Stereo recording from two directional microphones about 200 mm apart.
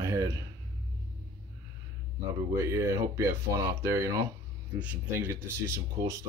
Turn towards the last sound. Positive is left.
turn(degrees=-15)  # may be behind; listen again after turning